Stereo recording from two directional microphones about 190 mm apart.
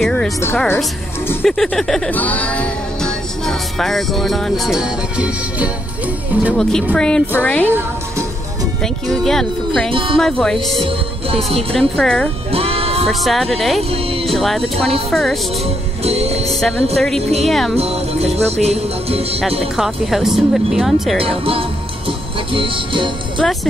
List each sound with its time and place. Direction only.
0.0 s a woman's voice: 5° left (ahead or behind)
1.4 s music: centre (ahead or behind)
6.5 s speech: 5° left (ahead or behind)
9.1 s speech: centre (ahead or behind)
9.8 s music: 25° right (ahead or behind)
10.1 s speech: 5° left (ahead or behind)
12.0 s speech: 5° left (ahead or behind)
12.5 s music: 30° right (ahead or behind)
13.0 s speech: centre (ahead or behind)
16.0 s music: 35° right (ahead or behind)
17.5 s speech: centre (ahead or behind)
17.7 s music: 35° right (ahead or behind)
19.8 s speech: centre (ahead or behind)
22.5 s music: 25° right (ahead or behind)